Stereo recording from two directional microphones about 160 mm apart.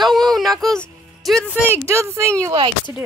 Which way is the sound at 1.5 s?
15° right (ahead or behind).